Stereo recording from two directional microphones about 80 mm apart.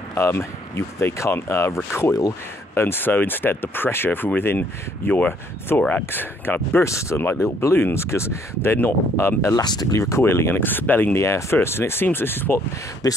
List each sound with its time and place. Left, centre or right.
0.1 s speech: left
6.8 s speech: left
9.6 s speech: left
9.9 s speech: left
11.1 s speech: left
13.0 s speech: left